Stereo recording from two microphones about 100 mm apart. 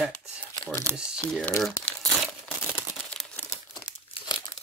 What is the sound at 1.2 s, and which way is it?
Speech, 10° left (ahead or behind).